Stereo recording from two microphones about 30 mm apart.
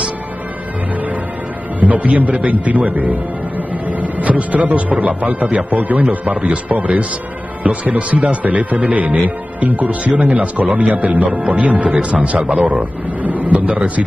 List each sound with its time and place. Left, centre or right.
1.8 s a man's voice: right
9.7 s speech: right
10.7 s speech: right
11.0 s speech: right